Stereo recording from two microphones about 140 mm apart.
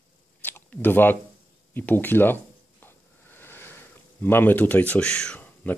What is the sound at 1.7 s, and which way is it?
Speech, 15° left (ahead or behind).